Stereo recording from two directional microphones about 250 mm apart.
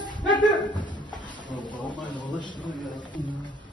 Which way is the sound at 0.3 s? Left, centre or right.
Centre.